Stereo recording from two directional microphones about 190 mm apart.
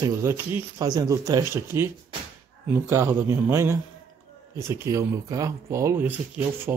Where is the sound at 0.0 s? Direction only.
15° right (ahead or behind).